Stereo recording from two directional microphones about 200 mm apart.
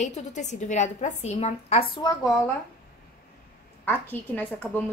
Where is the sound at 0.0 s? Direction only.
35° left (ahead or behind).